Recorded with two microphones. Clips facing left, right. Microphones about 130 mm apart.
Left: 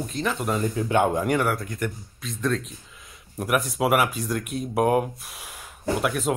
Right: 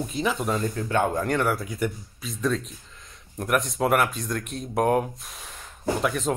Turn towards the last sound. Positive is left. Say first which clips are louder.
# even
turn(degrees=5)  # may be behind; listen again after turning